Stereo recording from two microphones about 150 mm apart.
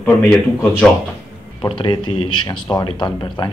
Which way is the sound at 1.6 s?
35° left (ahead or behind).